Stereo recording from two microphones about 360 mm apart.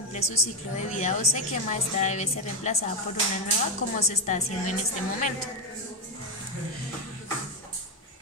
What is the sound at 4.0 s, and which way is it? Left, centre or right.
Speech, centre.